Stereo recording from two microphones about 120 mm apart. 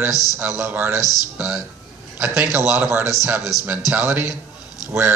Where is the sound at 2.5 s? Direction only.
20° right (ahead or behind).